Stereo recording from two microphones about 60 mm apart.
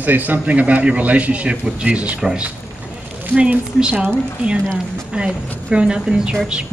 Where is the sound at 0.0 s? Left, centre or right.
Right.